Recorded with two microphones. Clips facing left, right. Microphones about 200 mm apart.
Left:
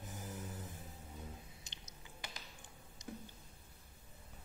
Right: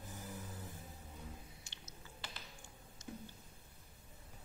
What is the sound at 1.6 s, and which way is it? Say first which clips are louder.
Squish: right 1 dB; 20° left (ahead or behind).